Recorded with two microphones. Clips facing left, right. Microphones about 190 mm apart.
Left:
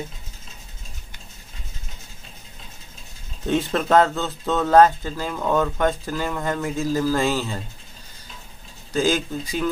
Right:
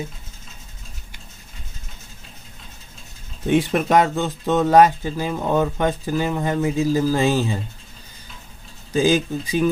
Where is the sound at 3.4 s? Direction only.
15° right (ahead or behind).